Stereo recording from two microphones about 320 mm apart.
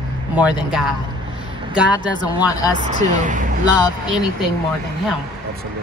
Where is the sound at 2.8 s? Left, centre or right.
Right.